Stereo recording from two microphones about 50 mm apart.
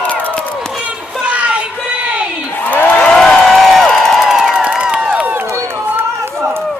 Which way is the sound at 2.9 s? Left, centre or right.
Centre.